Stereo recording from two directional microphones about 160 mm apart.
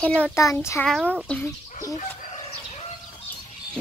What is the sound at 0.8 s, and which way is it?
Speech, centre (ahead or behind).